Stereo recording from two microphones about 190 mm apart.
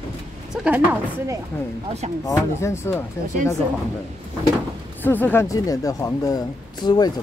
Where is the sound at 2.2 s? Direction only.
15° left (ahead or behind).